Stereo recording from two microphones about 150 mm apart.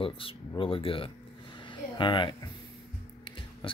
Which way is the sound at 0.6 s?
35° left (ahead or behind).